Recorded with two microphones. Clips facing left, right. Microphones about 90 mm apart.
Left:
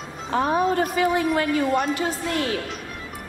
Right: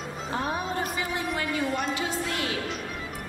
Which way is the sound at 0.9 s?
60° left (ahead or behind).